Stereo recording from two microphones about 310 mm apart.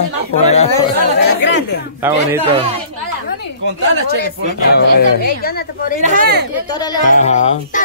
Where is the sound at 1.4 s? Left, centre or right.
Left.